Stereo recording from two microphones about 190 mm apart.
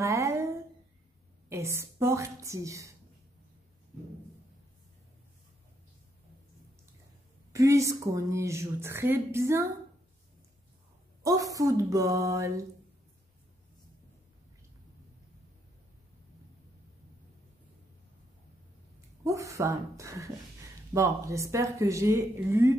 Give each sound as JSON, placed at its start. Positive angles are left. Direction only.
{"t": 0.0, "sound": "a sound", "side_deg": -15}
{"t": 1.5, "sound": "speech", "side_deg": -15}
{"t": 7.5, "sound": "speech", "side_deg": -15}
{"t": 11.2, "sound": "speech", "side_deg": -20}
{"t": 19.2, "sound": "speech", "side_deg": -15}